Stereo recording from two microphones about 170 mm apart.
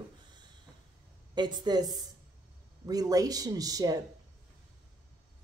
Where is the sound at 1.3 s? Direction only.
25° right (ahead or behind).